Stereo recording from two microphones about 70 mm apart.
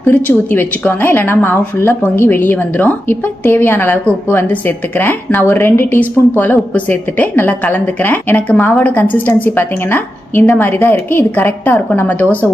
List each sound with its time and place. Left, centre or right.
0.1 s speech: left